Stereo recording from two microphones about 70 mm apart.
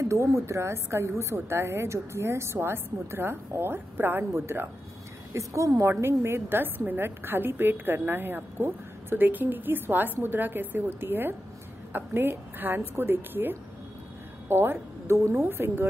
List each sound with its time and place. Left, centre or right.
0.1 s a woman's voice: right
5.3 s a woman's voice: right